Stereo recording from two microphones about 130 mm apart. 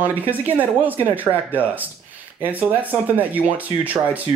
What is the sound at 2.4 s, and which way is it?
Speech, 15° right (ahead or behind).